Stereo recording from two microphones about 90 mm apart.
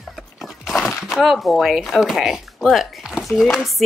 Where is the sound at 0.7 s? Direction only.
Centre (ahead or behind).